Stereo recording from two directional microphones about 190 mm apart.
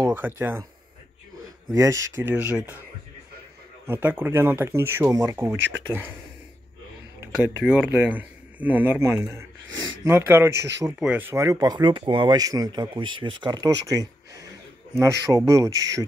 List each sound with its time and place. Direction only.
0.0 s speech: 10° right (ahead or behind)
1.7 s speech: 15° right (ahead or behind)
3.8 s speech: 10° right (ahead or behind)
5.6 s speech: 70° right (ahead or behind)
7.6 s speech: 5° right (ahead or behind)